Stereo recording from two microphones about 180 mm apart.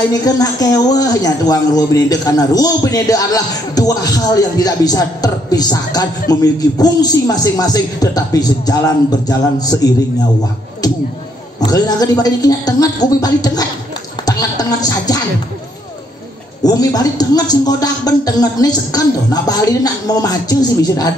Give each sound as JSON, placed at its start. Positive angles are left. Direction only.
{"t": 0.1, "sound": "speech", "side_deg": 20}
{"t": 11.6, "sound": "speech", "side_deg": 20}
{"t": 16.6, "sound": "speech", "side_deg": 20}